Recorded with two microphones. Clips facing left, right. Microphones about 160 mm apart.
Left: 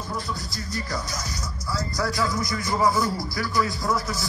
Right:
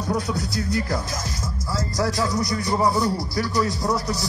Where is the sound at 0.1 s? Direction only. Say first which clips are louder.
Right 9 dB; 70° right (ahead or behind).